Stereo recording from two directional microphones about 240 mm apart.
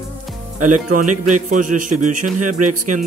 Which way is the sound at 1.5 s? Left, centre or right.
Right.